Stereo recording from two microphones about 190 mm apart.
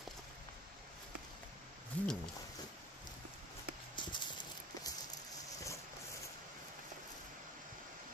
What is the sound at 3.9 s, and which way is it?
Clip-clop, 25° left (ahead or behind).